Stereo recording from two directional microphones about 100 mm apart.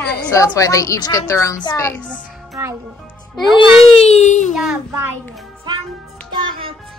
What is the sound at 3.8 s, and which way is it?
Speech, 85° left.